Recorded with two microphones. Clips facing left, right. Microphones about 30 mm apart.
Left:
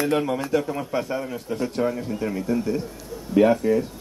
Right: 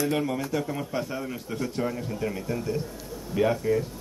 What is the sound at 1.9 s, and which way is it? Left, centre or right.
Speech, centre.